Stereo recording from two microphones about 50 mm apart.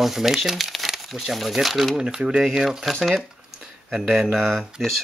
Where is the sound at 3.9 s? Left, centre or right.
Centre.